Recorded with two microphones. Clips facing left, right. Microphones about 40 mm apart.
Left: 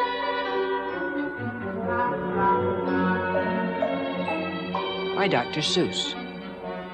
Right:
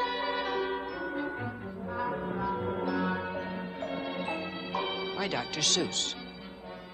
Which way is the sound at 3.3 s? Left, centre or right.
Left.